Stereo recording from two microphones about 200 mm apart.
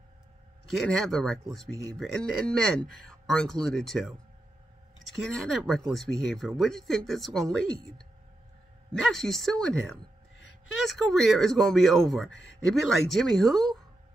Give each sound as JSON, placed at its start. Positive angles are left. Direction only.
{"t": 0.7, "sound": "speech", "side_deg": 0}
{"t": 9.0, "sound": "speech", "side_deg": 0}